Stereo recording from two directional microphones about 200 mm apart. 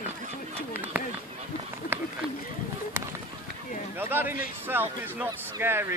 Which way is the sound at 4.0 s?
10° right (ahead or behind).